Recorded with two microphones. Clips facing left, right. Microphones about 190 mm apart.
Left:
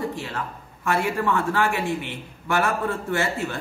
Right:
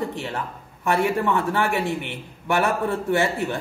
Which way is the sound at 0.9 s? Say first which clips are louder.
Right 2 dB; 20° right (ahead or behind).